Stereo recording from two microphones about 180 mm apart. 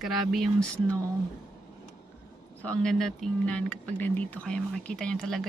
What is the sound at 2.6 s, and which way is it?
Speech, 5° left (ahead or behind).